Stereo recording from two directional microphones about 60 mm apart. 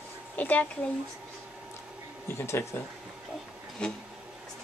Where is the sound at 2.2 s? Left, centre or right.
Left.